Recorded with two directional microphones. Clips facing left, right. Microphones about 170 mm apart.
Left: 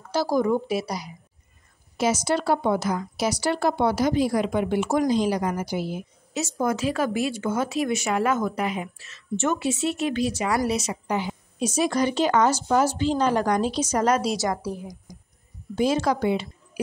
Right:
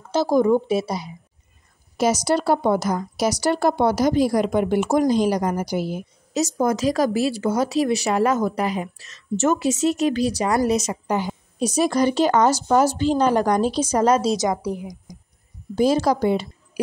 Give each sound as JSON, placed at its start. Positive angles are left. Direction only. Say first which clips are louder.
{"t": 0.1, "sound": "a woman's voice", "louder": "right 5 dB", "side_deg": -25}
{"t": 2.0, "sound": "speech", "louder": "right 3 dB", "side_deg": -40}
{"t": 15.7, "sound": "speech", "louder": "right 4 dB", "side_deg": -35}